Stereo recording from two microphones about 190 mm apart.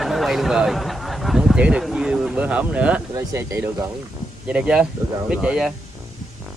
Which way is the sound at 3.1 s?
15° right (ahead or behind).